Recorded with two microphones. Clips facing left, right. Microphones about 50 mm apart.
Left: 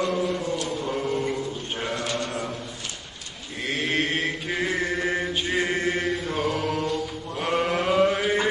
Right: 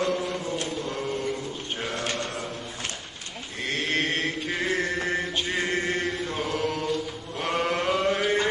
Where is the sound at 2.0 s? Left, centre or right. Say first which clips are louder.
Even; right.